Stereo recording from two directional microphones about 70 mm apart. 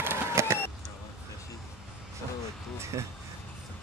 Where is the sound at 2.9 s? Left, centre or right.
Right.